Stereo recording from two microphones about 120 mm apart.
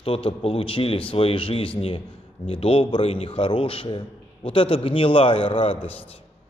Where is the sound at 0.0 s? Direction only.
50° left (ahead or behind).